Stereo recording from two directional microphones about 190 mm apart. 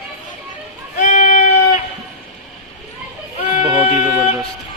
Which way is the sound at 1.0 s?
40° left (ahead or behind).